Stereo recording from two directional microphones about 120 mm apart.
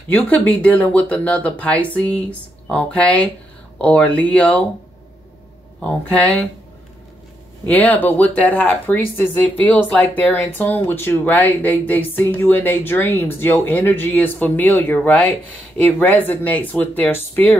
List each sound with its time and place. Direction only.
0.1 s speech: 15° left (ahead or behind)
5.8 s speech: 10° left (ahead or behind)
7.6 s speech: 15° left (ahead or behind)